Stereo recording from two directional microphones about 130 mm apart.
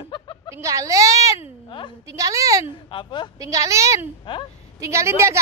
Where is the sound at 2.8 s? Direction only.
40° left (ahead or behind).